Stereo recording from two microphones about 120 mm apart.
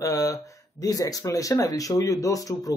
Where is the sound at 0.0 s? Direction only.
25° left (ahead or behind).